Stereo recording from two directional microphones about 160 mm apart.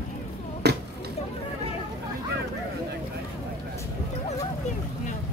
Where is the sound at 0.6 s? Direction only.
90° right.